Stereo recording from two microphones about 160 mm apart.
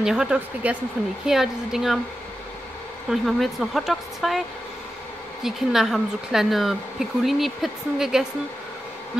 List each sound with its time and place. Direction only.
0.0 s speech: 5° right (ahead or behind)
3.1 s speech: centre (ahead or behind)
5.4 s speech: centre (ahead or behind)